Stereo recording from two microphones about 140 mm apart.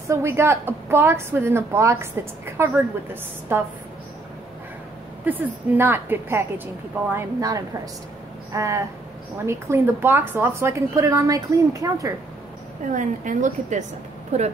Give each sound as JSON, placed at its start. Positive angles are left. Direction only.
{"t": 0.1, "sound": "a woman's voice", "side_deg": -20}
{"t": 5.2, "sound": "a woman's voice", "side_deg": -15}
{"t": 12.9, "sound": "a woman's voice", "side_deg": -65}
{"t": 14.3, "sound": "speech", "side_deg": -50}